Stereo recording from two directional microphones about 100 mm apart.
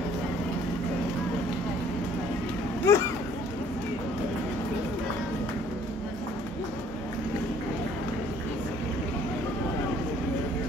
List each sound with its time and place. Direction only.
2.9 s speech: 25° left (ahead or behind)